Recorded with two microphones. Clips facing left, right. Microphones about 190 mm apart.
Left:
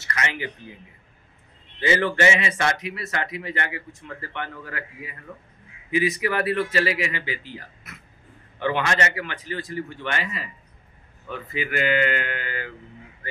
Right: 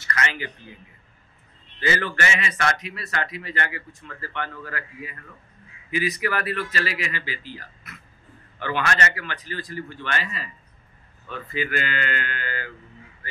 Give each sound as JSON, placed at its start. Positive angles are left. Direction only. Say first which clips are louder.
{"t": 0.0, "sound": "speech", "louder": "even", "side_deg": 20}
{"t": 1.8, "sound": "a man's voice", "louder": "left 4 dB", "side_deg": 20}